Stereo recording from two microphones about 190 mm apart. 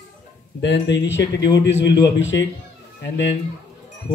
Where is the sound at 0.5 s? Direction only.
70° left (ahead or behind).